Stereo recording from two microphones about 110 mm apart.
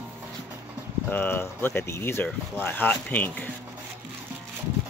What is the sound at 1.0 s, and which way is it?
Speech, 20° left (ahead or behind).